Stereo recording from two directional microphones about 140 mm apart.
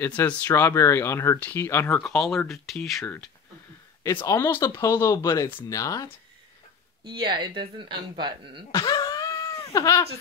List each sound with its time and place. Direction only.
0.0 s speech: 15° left (ahead or behind)
2.0 s speech: 5° left (ahead or behind)
4.1 s speech: 20° left (ahead or behind)
7.1 s a woman's voice: 35° right (ahead or behind)
8.7 s wail: 25° left (ahead or behind)